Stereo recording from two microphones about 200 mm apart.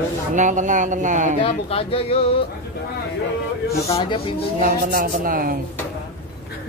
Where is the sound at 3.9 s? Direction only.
25° left (ahead or behind).